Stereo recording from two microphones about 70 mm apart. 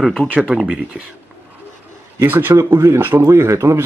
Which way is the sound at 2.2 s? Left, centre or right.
Right.